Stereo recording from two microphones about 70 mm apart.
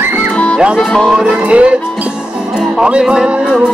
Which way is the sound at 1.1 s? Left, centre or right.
Centre.